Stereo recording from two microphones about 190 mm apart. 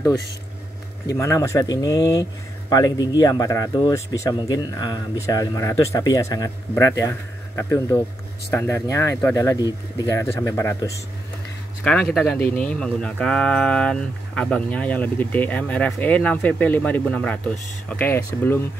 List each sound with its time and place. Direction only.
1.0 s speech: 15° left (ahead or behind)
11.8 s speech: 5° left (ahead or behind)